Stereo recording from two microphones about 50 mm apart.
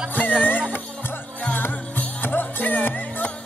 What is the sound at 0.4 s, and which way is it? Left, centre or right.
Music, left.